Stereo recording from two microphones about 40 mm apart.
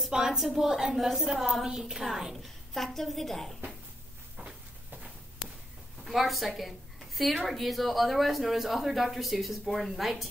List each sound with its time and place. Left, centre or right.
0.1 s a woman's voice: centre
2.3 s a woman's voice: centre
6.0 s a woman's voice: centre